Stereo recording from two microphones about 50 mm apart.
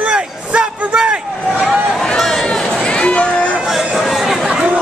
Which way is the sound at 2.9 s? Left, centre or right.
Left.